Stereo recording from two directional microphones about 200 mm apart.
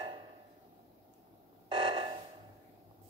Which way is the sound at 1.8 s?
25° right (ahead or behind).